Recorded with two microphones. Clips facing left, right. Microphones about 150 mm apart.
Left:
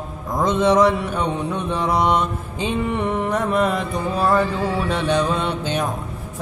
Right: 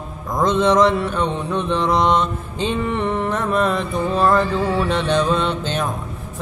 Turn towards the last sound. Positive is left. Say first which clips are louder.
# right 1 dB
turn(degrees=10)  # may be behind; listen again after turning